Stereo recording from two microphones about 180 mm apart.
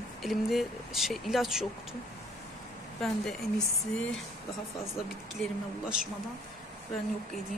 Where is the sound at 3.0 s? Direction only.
Centre (ahead or behind).